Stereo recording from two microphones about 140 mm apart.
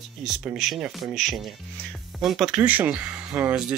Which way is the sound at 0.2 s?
5° right (ahead or behind).